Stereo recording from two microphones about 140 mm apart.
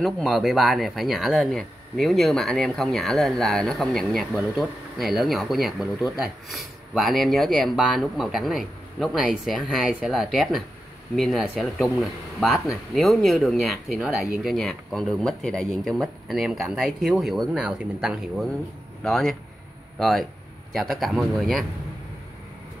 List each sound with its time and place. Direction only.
0.0 s speech: centre (ahead or behind)